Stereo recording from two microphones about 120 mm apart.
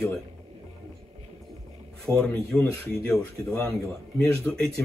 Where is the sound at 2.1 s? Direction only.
5° left (ahead or behind).